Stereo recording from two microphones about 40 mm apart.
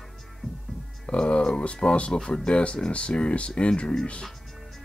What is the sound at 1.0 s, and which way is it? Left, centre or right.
Speech, left.